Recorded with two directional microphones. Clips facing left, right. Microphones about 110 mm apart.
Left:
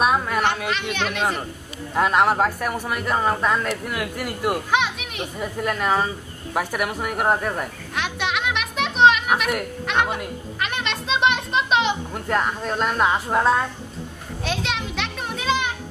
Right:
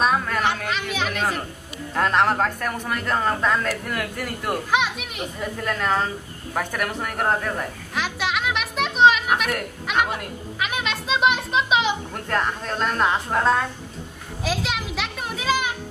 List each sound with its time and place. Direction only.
0.0 s a woman's voice: 10° left (ahead or behind)
7.9 s music: centre (ahead or behind)
14.4 s children playing: 5° right (ahead or behind)